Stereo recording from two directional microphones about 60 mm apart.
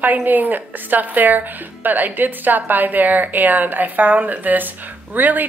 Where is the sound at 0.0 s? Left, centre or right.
Right.